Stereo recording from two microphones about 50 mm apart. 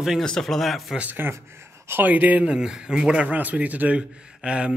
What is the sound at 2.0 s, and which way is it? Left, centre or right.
Speech, right.